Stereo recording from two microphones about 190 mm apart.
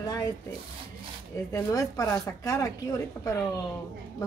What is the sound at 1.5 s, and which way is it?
Speech, 15° left (ahead or behind).